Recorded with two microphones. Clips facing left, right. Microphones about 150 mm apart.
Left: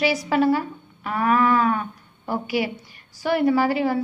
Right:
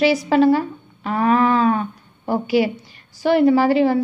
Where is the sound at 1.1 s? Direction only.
30° right (ahead or behind).